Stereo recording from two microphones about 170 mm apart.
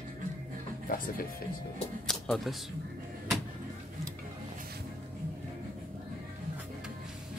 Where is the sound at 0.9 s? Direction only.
55° left (ahead or behind).